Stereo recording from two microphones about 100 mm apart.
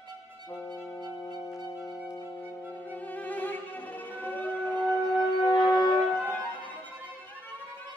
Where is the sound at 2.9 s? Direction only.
15° left (ahead or behind).